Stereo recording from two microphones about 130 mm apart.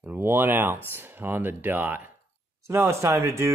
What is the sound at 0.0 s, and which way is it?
Speech, 15° right (ahead or behind).